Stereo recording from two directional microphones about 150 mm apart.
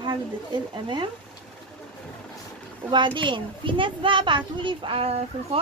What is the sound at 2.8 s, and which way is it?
A child's voice, 30° right (ahead or behind).